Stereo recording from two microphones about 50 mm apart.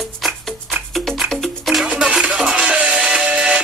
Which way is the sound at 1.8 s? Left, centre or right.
Right.